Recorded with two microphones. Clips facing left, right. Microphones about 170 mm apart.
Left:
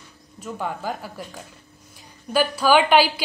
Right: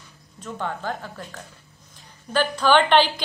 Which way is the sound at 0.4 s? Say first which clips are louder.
Left 1 dB; 10° left (ahead or behind).